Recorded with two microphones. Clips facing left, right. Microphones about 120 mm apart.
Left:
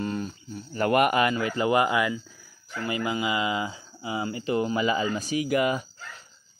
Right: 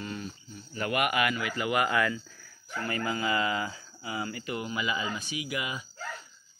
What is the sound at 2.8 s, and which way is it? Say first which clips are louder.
Speech: left 3 dB; 15° left (ahead or behind).